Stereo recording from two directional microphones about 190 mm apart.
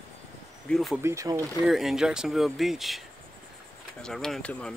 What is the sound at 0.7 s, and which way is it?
Speech, centre (ahead or behind).